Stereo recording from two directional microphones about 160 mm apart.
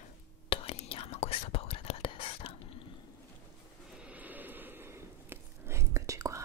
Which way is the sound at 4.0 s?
10° right (ahead or behind).